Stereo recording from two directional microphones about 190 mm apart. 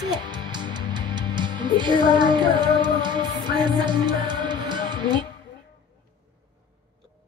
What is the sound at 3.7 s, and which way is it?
Music, 25° right (ahead or behind).